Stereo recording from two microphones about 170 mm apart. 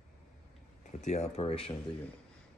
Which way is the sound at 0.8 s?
45° left (ahead or behind).